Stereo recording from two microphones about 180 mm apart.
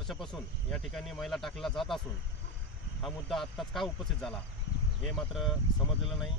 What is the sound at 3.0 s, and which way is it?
Speech, centre (ahead or behind).